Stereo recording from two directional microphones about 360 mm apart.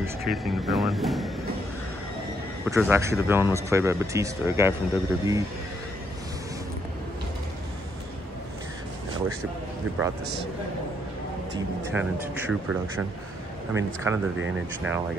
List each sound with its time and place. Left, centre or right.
0.4 s speech: centre
2.6 s speech: centre
9.9 s a man's voice: right
11.9 s speech: centre
13.7 s speech: centre